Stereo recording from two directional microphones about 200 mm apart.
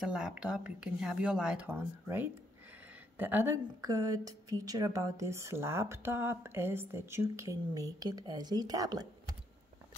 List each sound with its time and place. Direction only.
0.0 s a woman's voice: 5° right (ahead or behind)